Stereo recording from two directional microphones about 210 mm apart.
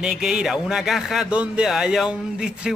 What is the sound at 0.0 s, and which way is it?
Speech, centre (ahead or behind).